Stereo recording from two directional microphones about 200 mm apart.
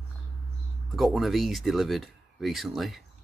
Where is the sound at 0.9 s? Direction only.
Centre (ahead or behind).